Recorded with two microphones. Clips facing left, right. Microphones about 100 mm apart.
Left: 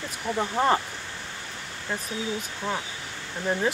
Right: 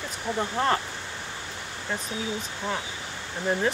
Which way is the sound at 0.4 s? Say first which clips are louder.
Left 2 dB; 15° left (ahead or behind).